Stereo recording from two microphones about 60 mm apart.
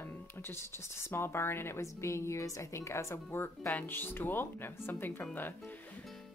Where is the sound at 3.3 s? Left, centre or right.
Left.